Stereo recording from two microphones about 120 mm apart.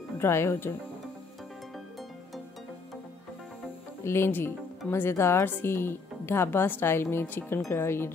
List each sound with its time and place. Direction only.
0.2 s a woman's voice: 20° left (ahead or behind)
4.0 s a woman's voice: 20° left (ahead or behind)